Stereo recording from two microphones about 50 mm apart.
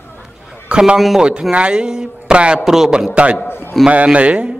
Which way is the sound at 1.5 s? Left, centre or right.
Right.